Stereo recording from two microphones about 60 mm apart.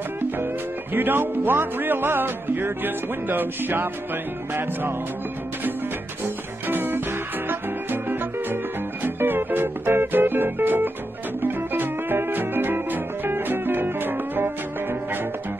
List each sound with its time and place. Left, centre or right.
0.9 s speech: right
6.7 s music: right